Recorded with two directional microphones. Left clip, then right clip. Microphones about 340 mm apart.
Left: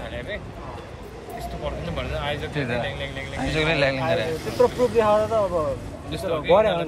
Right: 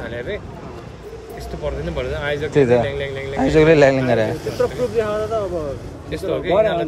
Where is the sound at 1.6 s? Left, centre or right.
Right.